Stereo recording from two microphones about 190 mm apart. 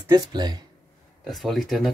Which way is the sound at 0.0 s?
20° right (ahead or behind).